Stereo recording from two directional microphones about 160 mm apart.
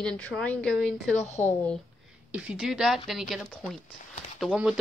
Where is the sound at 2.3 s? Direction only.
5° right (ahead or behind).